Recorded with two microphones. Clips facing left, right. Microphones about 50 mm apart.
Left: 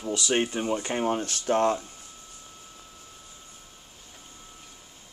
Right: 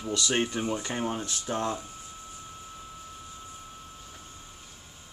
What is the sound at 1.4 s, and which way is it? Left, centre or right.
Speech, left.